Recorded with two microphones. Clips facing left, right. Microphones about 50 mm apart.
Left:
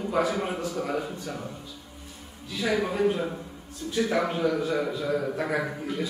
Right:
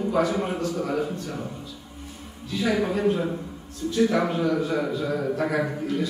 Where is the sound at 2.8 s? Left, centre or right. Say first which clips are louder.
Right 2 dB; centre.